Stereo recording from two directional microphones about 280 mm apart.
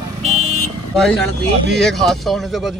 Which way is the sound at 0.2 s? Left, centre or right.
Right.